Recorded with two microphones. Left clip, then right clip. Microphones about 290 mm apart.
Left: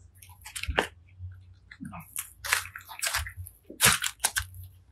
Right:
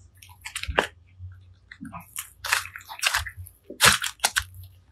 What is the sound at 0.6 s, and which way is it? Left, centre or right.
Chewing, centre.